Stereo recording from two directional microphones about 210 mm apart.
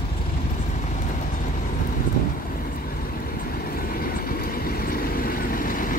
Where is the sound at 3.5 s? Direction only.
45° left (ahead or behind).